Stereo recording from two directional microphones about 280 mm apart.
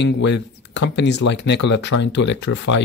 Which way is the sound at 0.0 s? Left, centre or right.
Left.